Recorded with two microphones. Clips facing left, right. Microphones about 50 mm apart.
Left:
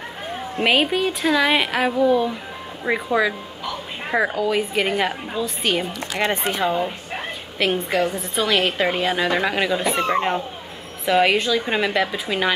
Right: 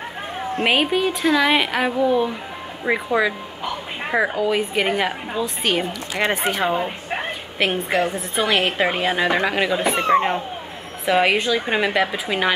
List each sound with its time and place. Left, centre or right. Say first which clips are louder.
0.7 s a woman's voice: even; centre
9.8 s speech: right 3 dB; right
11.1 s speech: even; centre